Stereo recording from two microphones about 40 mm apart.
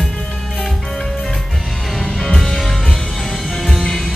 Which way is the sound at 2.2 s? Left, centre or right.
Centre.